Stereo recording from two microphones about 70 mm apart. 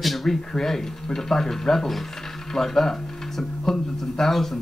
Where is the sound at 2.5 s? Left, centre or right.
Centre.